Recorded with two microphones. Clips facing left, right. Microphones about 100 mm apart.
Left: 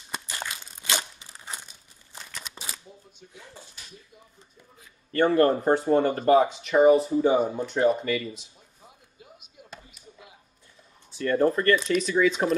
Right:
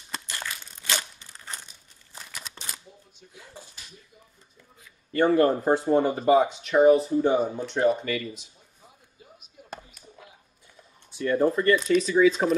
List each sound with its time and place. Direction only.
0.1 s crumpling: 15° left (ahead or behind)
1.3 s a sound: 5° left (ahead or behind)
2.1 s shuffling cards: centre (ahead or behind)
5.1 s speech: centre (ahead or behind)
11.1 s speech: 5° right (ahead or behind)